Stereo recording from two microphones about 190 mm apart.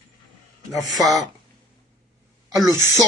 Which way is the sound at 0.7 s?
Centre (ahead or behind).